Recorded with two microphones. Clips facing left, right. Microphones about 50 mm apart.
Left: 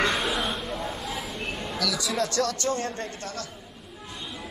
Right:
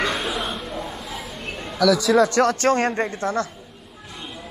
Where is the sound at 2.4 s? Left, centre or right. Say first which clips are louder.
Right 9 dB; right.